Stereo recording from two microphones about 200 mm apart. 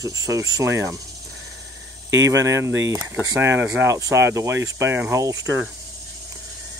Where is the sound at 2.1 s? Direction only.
15° right (ahead or behind).